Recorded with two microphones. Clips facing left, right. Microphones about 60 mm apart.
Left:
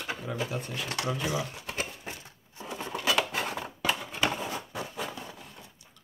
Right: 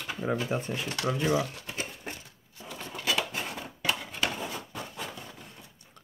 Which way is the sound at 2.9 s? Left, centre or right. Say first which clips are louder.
Left 3 dB; left.